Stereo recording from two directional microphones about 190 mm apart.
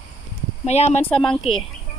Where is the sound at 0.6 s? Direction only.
35° left (ahead or behind).